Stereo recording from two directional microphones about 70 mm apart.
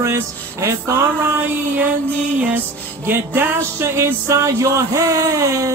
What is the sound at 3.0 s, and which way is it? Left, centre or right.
Music, right.